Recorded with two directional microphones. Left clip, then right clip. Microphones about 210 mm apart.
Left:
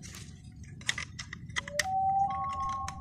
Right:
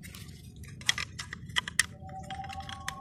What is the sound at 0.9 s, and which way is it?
Music, 10° right (ahead or behind).